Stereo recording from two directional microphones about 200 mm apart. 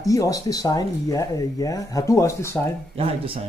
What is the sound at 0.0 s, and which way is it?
Speech, 15° left (ahead or behind).